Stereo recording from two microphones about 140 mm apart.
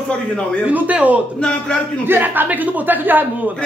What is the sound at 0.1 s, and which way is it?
Speech, 5° left (ahead or behind).